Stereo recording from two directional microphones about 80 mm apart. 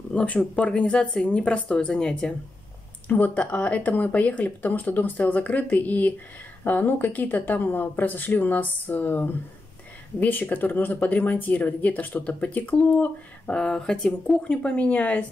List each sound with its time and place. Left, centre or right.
0.1 s speech: centre
3.1 s speech: centre